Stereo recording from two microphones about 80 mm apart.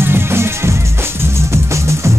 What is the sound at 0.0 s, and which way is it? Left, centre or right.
Music, right.